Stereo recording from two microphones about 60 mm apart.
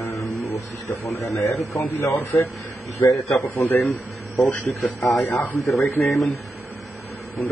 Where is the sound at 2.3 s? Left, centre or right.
Left.